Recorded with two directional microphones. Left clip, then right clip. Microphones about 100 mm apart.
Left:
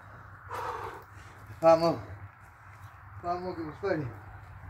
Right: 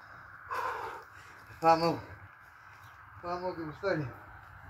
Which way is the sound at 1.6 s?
30° left (ahead or behind).